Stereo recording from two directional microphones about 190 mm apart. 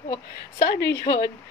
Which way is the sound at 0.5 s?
60° left (ahead or behind).